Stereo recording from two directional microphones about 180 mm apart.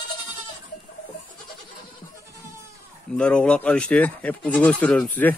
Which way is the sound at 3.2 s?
5° left (ahead or behind).